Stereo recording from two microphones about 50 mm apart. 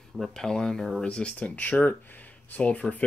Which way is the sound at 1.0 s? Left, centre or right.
Left.